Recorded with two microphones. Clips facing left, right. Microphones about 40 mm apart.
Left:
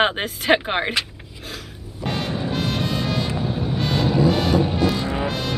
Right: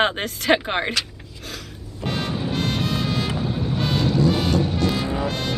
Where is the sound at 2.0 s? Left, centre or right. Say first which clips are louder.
Left 1 dB; centre.